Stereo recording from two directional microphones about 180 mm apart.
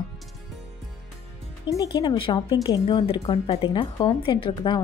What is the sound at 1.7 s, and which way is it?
Speech, 20° left (ahead or behind).